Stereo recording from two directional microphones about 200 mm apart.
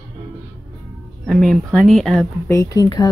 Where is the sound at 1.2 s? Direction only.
Centre (ahead or behind).